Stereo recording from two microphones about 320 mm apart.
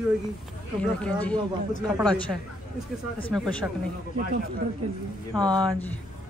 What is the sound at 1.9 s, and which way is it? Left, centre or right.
Speech, centre.